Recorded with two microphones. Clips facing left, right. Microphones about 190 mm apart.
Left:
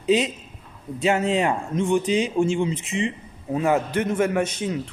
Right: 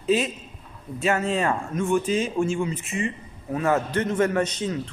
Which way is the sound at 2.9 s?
90° left.